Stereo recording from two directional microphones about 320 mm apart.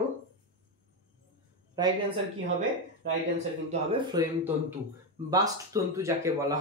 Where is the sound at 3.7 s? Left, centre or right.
Centre.